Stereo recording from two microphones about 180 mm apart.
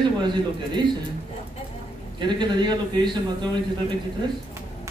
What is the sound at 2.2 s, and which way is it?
A man's voice, 25° right (ahead or behind).